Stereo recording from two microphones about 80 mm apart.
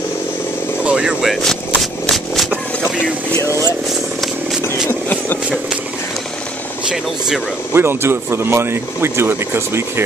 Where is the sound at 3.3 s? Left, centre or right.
Left.